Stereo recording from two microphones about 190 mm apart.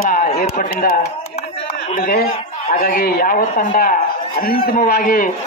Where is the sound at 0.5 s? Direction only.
50° left (ahead or behind).